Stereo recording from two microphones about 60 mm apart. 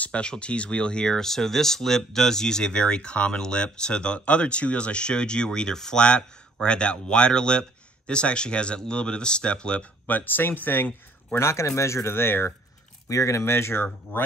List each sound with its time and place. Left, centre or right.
0.0 s speech: centre
10.0 s speech: left
11.3 s speech: left
13.1 s speech: left